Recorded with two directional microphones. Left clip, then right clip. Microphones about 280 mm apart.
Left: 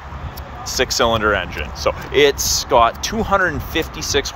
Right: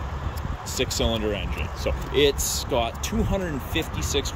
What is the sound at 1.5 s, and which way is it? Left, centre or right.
Speech, centre.